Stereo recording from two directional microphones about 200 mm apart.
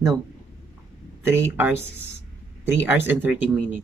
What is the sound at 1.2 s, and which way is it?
Speech, 10° right (ahead or behind).